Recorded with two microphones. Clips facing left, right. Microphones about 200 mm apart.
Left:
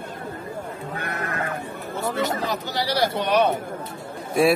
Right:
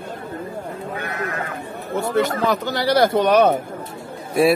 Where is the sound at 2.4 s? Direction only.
55° right (ahead or behind).